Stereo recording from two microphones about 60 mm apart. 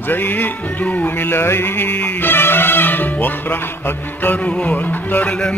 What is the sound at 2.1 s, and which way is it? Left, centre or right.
Music, left.